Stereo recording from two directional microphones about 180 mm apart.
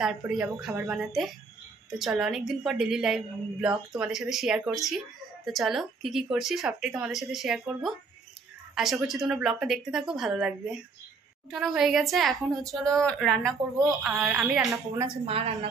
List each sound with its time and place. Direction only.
0.0 s speech: centre (ahead or behind)
9.0 s speech: centre (ahead or behind)
15.2 s a woman's voice: 30° right (ahead or behind)